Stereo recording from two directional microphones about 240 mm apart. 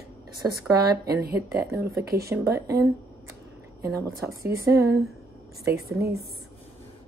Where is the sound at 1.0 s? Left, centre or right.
Right.